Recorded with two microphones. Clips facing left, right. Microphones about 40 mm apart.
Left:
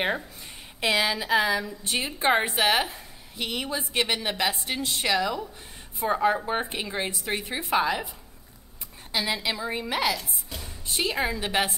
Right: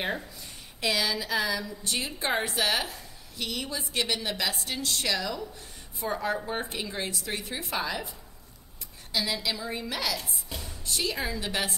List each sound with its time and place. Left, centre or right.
0.7 s a woman's voice: left
9.1 s a woman's voice: left
10.1 s speech: centre
10.9 s a woman's voice: left